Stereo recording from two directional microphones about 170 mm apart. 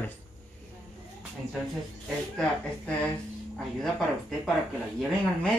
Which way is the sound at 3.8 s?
Centre (ahead or behind).